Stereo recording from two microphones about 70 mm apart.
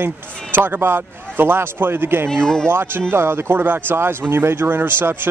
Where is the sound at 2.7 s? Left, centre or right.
Right.